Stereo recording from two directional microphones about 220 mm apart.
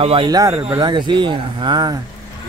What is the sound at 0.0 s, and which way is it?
Speech, 25° right (ahead or behind).